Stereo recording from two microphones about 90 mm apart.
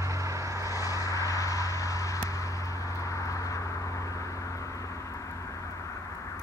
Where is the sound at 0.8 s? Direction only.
40° left (ahead or behind).